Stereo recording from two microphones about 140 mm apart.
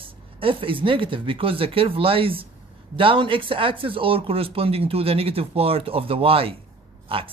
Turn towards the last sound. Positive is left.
turn(degrees=-40)  # may be behind; listen again after turning